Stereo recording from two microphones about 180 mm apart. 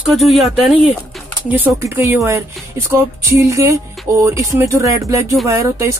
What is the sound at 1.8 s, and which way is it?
Speech, 15° right (ahead or behind).